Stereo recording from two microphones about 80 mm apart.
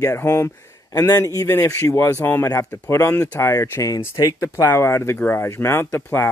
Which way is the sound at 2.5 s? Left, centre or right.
Left.